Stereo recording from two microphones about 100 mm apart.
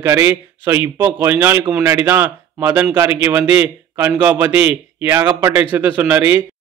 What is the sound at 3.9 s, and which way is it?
Speech, 30° right (ahead or behind).